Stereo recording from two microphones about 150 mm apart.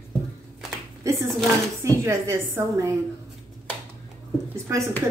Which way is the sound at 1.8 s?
20° right (ahead or behind).